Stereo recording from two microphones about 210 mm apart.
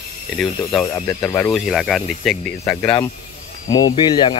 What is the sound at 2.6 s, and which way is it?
Speech, 15° left (ahead or behind).